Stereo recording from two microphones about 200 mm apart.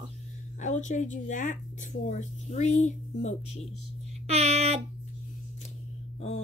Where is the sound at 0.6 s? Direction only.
35° left (ahead or behind).